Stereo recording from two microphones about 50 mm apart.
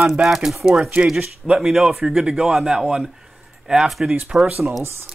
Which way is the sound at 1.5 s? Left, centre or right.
Centre.